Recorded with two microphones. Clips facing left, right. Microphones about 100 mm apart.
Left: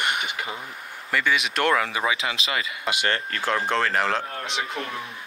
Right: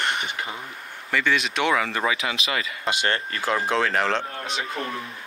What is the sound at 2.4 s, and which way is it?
Speech, 25° left (ahead or behind).